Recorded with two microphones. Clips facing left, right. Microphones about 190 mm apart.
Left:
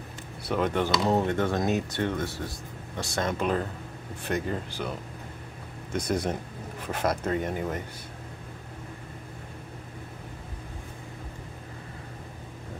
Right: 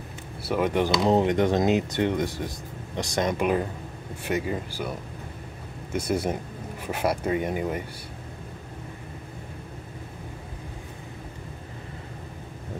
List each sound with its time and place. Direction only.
0.5 s speech: 10° right (ahead or behind)
5.9 s speech: 10° right (ahead or behind)